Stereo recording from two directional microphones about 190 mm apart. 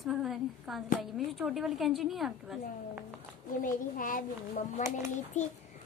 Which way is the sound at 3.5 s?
45° left (ahead or behind).